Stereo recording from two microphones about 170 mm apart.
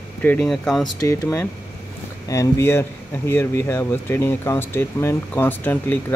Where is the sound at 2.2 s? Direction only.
15° left (ahead or behind).